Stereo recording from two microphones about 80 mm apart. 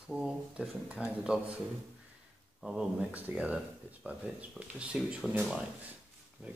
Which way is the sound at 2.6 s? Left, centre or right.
Centre.